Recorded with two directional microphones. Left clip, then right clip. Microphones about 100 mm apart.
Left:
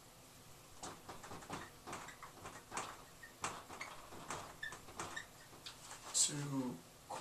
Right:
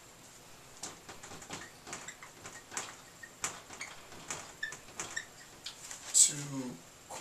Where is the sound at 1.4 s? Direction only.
5° right (ahead or behind).